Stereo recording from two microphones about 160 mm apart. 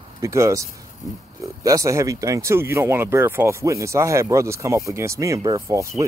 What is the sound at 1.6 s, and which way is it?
Speech, 20° right (ahead or behind).